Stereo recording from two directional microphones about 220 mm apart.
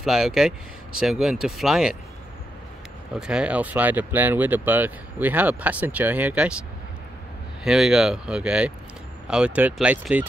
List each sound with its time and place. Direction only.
0.0 s speech: centre (ahead or behind)
3.2 s speech: 5° right (ahead or behind)
7.6 s speech: centre (ahead or behind)